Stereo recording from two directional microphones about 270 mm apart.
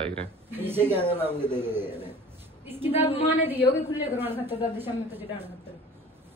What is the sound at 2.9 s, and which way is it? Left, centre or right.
Speech, left.